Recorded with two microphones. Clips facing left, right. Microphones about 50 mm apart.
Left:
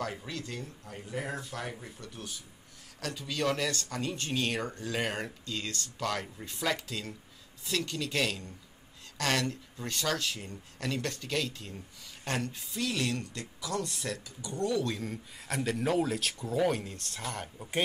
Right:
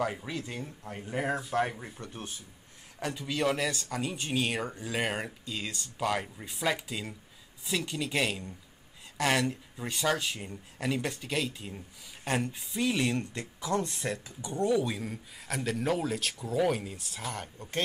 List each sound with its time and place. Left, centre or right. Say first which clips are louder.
0.0 s speech: right 4 dB; centre
0.8 s speech: right 6 dB; right
3.0 s speech: right 3 dB; centre